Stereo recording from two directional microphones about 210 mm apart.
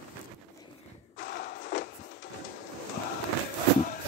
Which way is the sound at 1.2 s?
45° left (ahead or behind).